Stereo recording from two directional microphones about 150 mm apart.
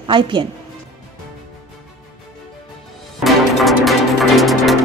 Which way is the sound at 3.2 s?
Centre (ahead or behind).